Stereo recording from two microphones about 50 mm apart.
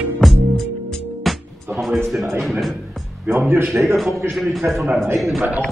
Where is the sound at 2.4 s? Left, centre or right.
Centre.